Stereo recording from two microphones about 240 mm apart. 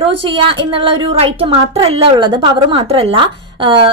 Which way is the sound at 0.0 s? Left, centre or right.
Right.